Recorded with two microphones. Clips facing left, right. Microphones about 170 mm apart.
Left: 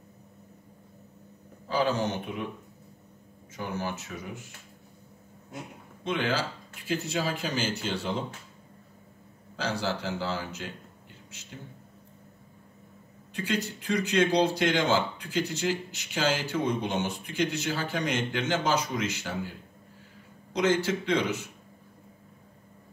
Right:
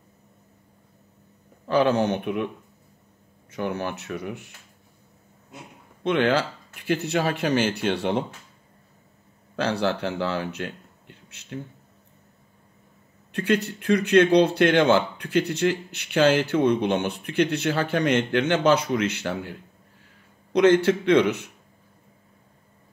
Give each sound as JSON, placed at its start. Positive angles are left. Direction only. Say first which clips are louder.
{"t": 1.7, "sound": "speech", "louder": "right 7 dB", "side_deg": -65}
{"t": 3.5, "sound": "speech", "louder": "right 5 dB", "side_deg": -65}
{"t": 6.0, "sound": "speech", "louder": "right 7 dB", "side_deg": -65}
{"t": 9.6, "sound": "speech", "louder": "right 6 dB", "side_deg": -60}
{"t": 13.3, "sound": "speech", "louder": "right 7 dB", "side_deg": -65}
{"t": 20.5, "sound": "speech", "louder": "right 8 dB", "side_deg": -60}